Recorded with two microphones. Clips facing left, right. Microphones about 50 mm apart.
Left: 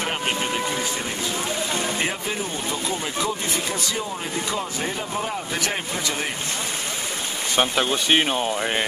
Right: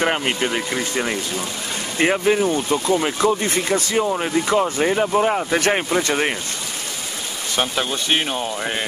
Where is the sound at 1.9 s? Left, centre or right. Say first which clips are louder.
Right 9 dB; right.